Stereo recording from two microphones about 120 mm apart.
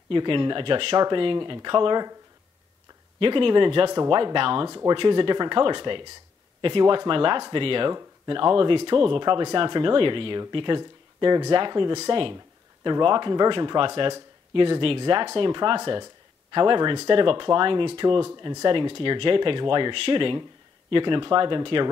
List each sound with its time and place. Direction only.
0.1 s speech: 45° right (ahead or behind)
3.2 s speech: 45° right (ahead or behind)
4.6 s speech: 30° right (ahead or behind)
4.9 s speech: 45° right (ahead or behind)